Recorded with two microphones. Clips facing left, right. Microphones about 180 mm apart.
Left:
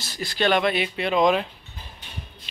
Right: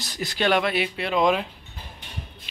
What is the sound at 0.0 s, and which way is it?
Speech, 15° right (ahead or behind).